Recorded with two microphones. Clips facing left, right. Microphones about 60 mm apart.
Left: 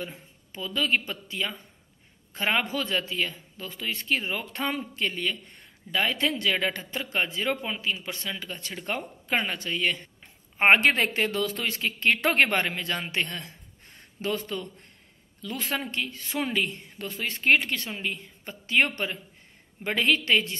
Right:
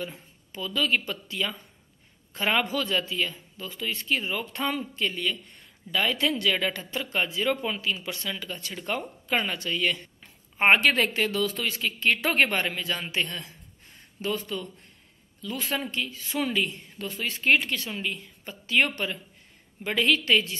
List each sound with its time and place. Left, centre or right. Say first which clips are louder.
0.5 s speech: even; left
7.6 s speech: right 1 dB; left